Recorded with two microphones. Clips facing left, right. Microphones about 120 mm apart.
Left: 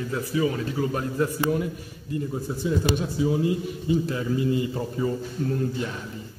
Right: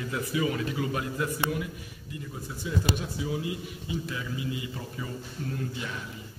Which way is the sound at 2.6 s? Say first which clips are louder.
Left 5 dB; 35° left (ahead or behind).